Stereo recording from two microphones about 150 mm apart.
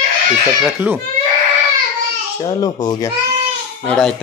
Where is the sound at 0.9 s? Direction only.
10° right (ahead or behind).